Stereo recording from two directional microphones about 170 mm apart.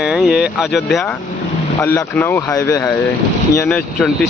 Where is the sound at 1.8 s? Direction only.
15° left (ahead or behind).